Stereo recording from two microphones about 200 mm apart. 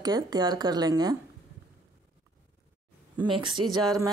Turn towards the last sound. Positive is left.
turn(degrees=-15)  # may be behind; listen again after turning